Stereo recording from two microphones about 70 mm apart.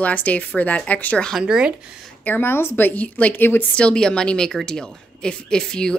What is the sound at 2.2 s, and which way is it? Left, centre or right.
A woman's voice, left.